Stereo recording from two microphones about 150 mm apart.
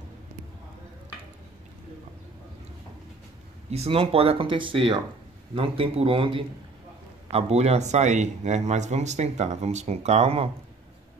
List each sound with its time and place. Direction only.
3.7 s speech: 40° right (ahead or behind)